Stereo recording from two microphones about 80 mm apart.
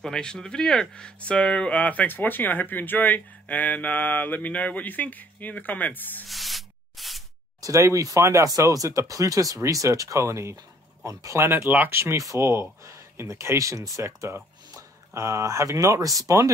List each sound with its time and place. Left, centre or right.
0.0 s speech: centre
6.2 s rub: centre
7.6 s speech: right